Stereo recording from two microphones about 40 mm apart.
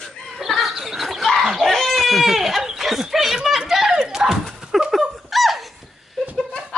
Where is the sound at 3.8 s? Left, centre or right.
Centre.